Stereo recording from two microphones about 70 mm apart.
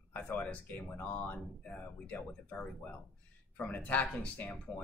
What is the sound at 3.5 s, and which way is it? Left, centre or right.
Speech, left.